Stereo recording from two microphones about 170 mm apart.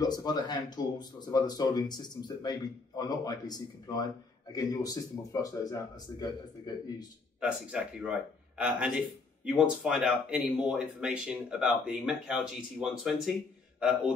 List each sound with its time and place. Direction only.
0.0 s speech: 25° left (ahead or behind)
7.3 s a man's voice: 5° right (ahead or behind)